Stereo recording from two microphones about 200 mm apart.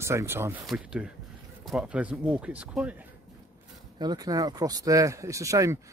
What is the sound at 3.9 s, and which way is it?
Speech, 20° right (ahead or behind).